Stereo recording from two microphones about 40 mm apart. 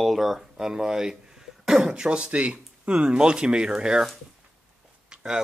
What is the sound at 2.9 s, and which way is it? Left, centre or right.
Speech, right.